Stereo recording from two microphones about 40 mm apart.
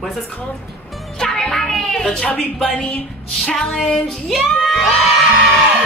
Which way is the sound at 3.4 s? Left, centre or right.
Centre.